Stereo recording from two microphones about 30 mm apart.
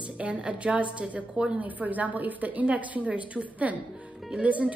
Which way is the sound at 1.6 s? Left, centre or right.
Right.